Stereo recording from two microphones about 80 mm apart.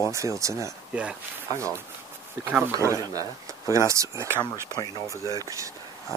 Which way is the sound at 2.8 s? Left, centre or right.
Right.